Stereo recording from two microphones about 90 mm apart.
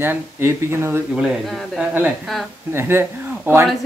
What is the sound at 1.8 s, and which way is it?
Speech, 20° right (ahead or behind).